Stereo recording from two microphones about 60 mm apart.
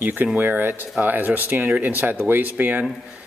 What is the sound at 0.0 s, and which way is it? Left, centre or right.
Speech, right.